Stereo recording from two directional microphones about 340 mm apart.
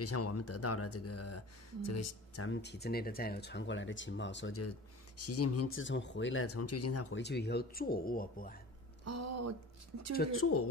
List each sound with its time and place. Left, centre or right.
0.0 s speech: left
9.0 s speech: right
10.4 s speech: left